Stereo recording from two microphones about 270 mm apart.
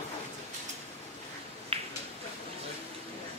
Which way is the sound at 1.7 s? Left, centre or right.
Right.